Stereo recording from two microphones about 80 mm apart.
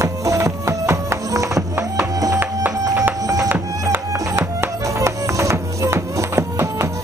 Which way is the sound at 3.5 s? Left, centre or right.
Right.